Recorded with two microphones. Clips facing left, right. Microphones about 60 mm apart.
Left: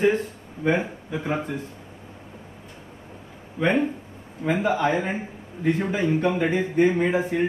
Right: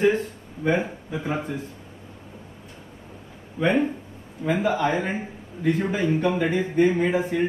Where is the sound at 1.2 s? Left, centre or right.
Centre.